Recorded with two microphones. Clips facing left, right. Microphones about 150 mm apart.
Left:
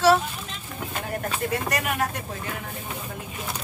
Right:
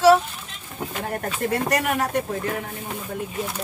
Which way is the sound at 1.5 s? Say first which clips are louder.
Right 8 dB; 45° right (ahead or behind).